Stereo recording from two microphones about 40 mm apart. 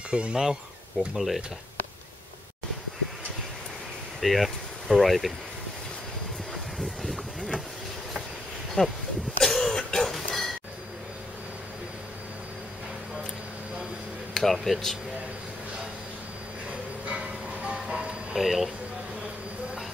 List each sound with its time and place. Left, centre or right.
0.1 s speech: right
1.1 s speech: centre
4.2 s speech: centre
6.8 s a sound: centre
8.8 s speech: left
9.4 s throat clearing: centre
10.1 s a sound: centre
14.3 s speech: centre
17.1 s train: right
17.7 s music: right
18.3 s speech: centre